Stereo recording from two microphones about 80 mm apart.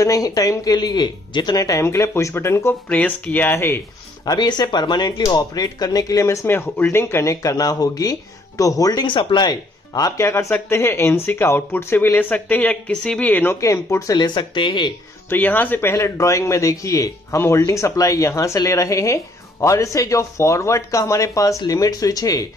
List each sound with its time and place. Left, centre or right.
0.0 s speech: left
1.8 s speech: left
2.9 s speech: centre
4.2 s speech: left
5.2 s speech: left
6.5 s speech: left
9.0 s speech: left
9.5 s speech: left
10.2 s speech: left
13.6 s speech: left
14.1 s speech: left
15.2 s speech: left